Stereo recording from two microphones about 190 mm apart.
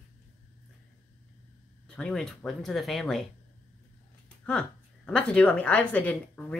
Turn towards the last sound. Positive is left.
turn(degrees=10)  # may be behind; listen again after turning